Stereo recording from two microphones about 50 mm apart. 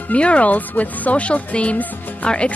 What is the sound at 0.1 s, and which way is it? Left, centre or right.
Speech, left.